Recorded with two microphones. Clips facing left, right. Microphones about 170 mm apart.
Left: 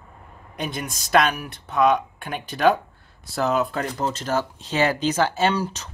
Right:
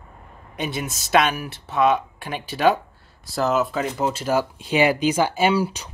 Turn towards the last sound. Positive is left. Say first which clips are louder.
# right 2 dB
turn(degrees=-10)  # may be behind; listen again after turning